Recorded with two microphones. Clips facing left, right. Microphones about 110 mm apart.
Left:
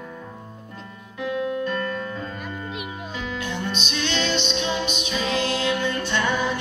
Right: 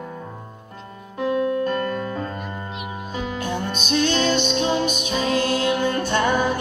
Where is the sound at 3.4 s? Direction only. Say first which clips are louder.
Right 1 dB; 45° right (ahead or behind).